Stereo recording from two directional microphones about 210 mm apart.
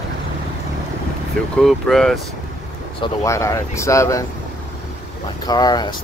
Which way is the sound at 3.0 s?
15° left (ahead or behind).